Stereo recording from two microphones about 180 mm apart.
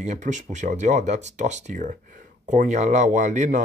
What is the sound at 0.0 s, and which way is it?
Speech, 40° right (ahead or behind).